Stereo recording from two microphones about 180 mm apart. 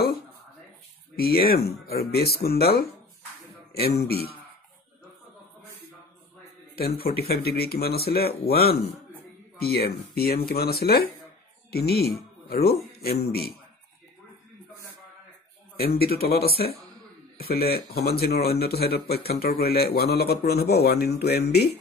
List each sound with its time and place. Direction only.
1.1 s a man's voice: 60° left (ahead or behind)
3.8 s a man's voice: 60° left (ahead or behind)
6.7 s a man's voice: 55° left (ahead or behind)
15.8 s a man's voice: 60° left (ahead or behind)